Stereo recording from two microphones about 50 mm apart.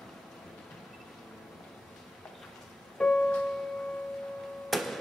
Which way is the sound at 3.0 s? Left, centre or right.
Centre.